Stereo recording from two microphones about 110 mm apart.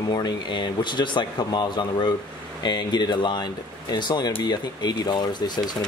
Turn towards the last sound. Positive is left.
turn(degrees=40)  # may be behind; listen again after turning